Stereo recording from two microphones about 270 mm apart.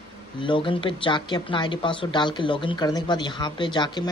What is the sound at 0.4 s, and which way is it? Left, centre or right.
Speech, centre.